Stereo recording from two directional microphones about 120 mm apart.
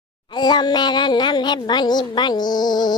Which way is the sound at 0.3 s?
35° left (ahead or behind).